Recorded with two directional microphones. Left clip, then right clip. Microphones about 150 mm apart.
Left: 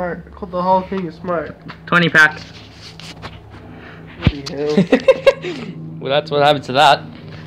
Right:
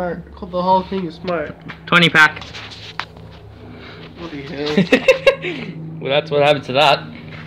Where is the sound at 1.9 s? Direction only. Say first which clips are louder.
Right 1 dB; 15° right (ahead or behind).